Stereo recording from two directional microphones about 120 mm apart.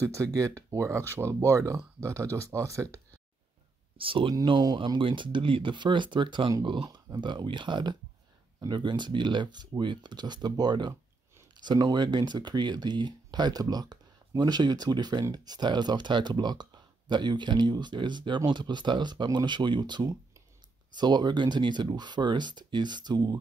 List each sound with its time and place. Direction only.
0.0 s speech: 25° right (ahead or behind)
4.0 s speech: 45° right (ahead or behind)